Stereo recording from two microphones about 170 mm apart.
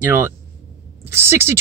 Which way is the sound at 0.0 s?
15° right (ahead or behind).